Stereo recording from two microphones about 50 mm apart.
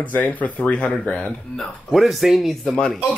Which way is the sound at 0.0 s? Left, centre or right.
Left.